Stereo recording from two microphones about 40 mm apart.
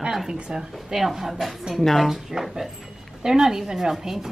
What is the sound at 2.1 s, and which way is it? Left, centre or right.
Speech, centre.